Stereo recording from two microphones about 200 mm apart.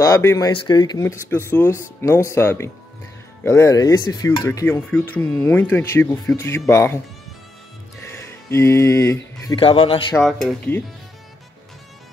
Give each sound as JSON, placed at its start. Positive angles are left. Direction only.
{"t": 0.0, "sound": "speech", "side_deg": 15}
{"t": 8.1, "sound": "speech", "side_deg": 15}
{"t": 9.6, "sound": "a man's voice", "side_deg": 25}
{"t": 10.1, "sound": "speech", "side_deg": 5}